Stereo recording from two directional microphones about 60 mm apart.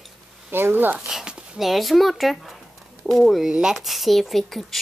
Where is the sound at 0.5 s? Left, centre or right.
Right.